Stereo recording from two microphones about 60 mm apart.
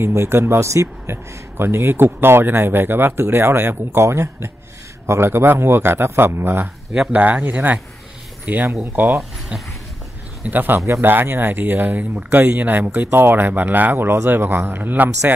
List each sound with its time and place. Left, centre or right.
0.0 s speech: right
7.1 s speech: right
9.5 s speech: right
10.5 s speech: right